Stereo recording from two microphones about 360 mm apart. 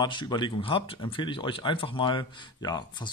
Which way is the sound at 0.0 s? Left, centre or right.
Centre.